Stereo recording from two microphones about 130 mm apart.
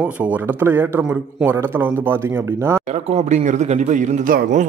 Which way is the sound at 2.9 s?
60° right (ahead or behind).